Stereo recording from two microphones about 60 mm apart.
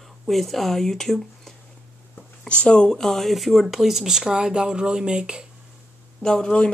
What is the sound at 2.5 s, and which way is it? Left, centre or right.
Speech, centre.